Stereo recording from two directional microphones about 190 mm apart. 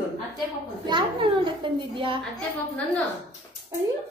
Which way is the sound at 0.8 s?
25° right (ahead or behind).